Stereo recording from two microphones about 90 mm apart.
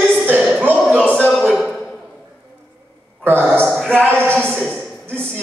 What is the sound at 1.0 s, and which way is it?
Speech, 15° left (ahead or behind).